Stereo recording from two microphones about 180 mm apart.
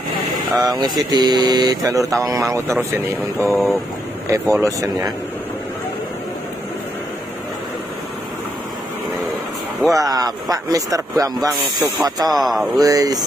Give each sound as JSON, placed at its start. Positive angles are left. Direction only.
{"t": 0.6, "sound": "speech", "side_deg": -20}
{"t": 3.3, "sound": "speech", "side_deg": 5}
{"t": 4.6, "sound": "speech", "side_deg": -20}
{"t": 9.9, "sound": "speech", "side_deg": -20}
{"t": 12.3, "sound": "speech", "side_deg": 0}
{"t": 12.7, "sound": "speech", "side_deg": -20}